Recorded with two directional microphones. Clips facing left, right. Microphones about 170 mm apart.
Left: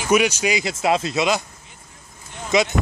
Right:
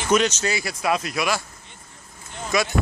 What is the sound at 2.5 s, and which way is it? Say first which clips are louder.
Speech: left 4 dB; 20° left (ahead or behind).